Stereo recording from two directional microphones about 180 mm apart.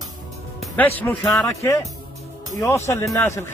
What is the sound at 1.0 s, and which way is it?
Speech, 10° left (ahead or behind).